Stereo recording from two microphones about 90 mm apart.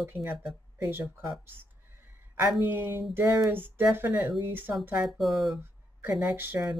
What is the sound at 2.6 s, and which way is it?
Speech, 20° right (ahead or behind).